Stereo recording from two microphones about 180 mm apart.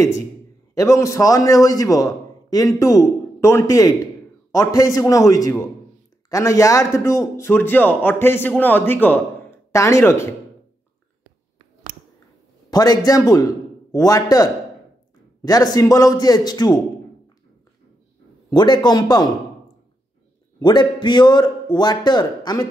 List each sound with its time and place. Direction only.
0.7 s a man's voice: 15° left (ahead or behind)
12.7 s a man's voice: 20° left (ahead or behind)
18.5 s a man's voice: 25° left (ahead or behind)
20.5 s a man's voice: 25° left (ahead or behind)